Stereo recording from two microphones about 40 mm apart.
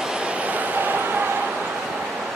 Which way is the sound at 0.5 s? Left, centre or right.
Right.